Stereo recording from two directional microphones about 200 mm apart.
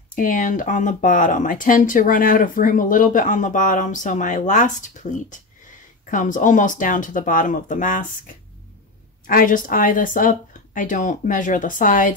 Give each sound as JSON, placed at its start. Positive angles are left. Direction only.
{"t": 0.1, "sound": "speech", "side_deg": 40}
{"t": 9.2, "sound": "speech", "side_deg": 45}